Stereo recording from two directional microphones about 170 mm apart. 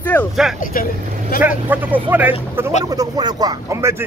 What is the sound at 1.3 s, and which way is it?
Speech, 60° left (ahead or behind).